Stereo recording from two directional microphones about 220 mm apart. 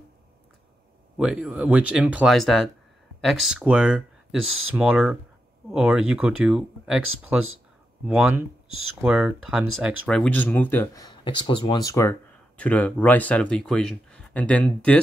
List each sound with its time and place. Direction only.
1.1 s speech: 5° right (ahead or behind)
7.1 s speech: 70° right (ahead or behind)
8.1 s speech: centre (ahead or behind)
8.6 s speech: 70° right (ahead or behind)
9.0 s speech: 5° right (ahead or behind)
11.1 s speech: 20° left (ahead or behind); by 15.0 s 5° left (ahead or behind)